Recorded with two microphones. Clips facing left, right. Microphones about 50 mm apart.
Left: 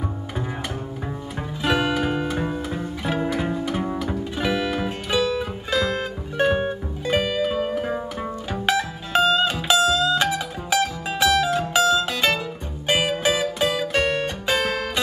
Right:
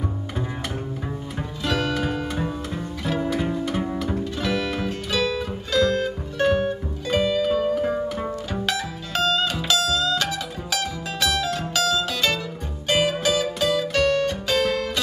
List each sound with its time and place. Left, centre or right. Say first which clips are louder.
1.6 s music: left 3 dB; centre
4.2 s music: left 1 dB; centre